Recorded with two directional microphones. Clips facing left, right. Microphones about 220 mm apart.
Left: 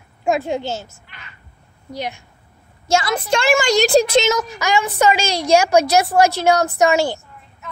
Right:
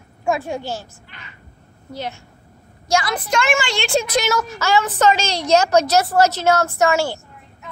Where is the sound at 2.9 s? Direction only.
25° left (ahead or behind).